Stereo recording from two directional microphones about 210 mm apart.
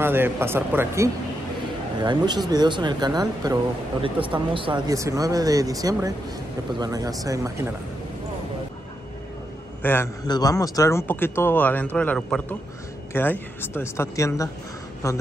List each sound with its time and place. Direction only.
0.0 s speech: 10° right (ahead or behind)
9.8 s a man's voice: 10° left (ahead or behind)